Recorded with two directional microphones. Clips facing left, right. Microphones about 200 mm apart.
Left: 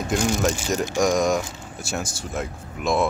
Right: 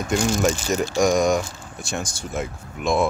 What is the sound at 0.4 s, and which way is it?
Speech, centre (ahead or behind).